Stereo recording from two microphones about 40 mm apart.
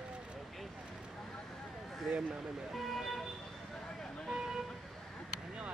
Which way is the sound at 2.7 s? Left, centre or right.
Centre.